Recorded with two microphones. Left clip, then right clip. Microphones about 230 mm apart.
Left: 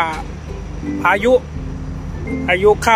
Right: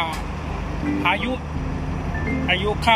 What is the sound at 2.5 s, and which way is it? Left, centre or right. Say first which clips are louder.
Speech: left 7 dB; centre.